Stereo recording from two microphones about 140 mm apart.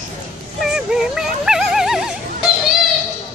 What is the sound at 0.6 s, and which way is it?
Music, 5° right (ahead or behind).